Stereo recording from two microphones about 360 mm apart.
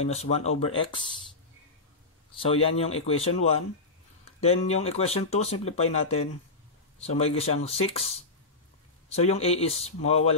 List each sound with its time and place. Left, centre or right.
0.0 s speech: centre
2.3 s speech: centre
4.4 s speech: centre